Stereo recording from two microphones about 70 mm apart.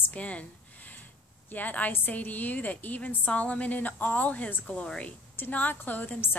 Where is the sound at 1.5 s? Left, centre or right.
Left.